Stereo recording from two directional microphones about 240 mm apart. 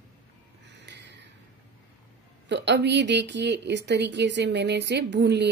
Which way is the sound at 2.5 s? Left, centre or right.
Right.